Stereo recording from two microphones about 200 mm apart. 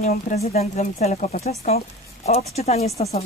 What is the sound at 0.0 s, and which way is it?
Speech, 35° left (ahead or behind).